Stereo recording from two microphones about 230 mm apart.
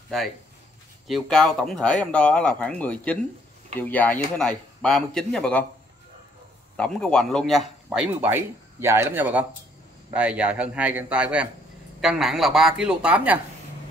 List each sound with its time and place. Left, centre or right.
1.0 s speech: centre
6.8 s speech: centre